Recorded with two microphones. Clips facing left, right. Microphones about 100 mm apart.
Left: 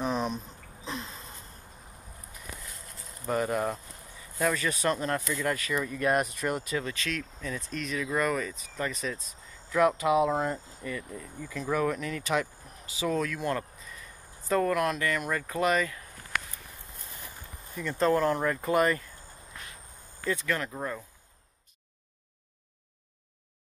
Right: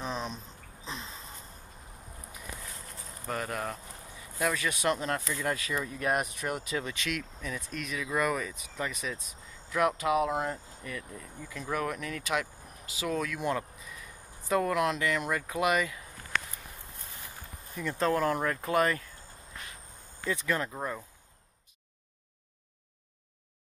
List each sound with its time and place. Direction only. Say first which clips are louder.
0.0 s a sound: left 6 dB; 10° left (ahead or behind)
3.3 s speech: left 6 dB; 5° left (ahead or behind)
5.4 s speech: left 2 dB; 15° right (ahead or behind)
13.4 s speech: even; 15° right (ahead or behind)
17.7 s speech: left 3 dB; centre (ahead or behind)
20.3 s speech: even; 20° right (ahead or behind)